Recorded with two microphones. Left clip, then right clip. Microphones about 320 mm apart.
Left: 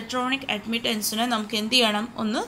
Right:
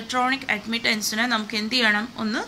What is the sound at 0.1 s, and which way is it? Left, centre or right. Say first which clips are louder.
A woman's voice: right 4 dB; centre.